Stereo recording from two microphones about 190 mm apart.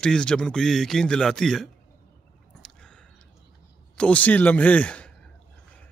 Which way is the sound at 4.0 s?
5° left (ahead or behind).